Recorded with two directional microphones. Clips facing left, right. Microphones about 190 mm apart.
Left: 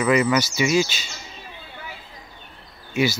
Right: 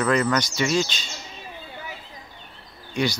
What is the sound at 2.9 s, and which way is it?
Speech, 5° left (ahead or behind).